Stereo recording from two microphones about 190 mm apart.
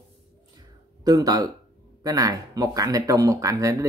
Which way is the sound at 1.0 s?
20° right (ahead or behind).